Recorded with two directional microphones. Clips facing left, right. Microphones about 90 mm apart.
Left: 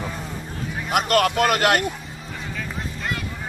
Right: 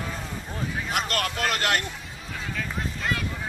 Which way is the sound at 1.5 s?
60° left (ahead or behind).